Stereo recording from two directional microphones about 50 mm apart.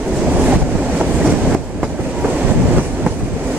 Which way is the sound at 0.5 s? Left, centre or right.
Right.